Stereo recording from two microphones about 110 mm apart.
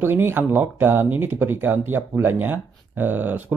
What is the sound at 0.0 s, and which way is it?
Speech, 20° right (ahead or behind).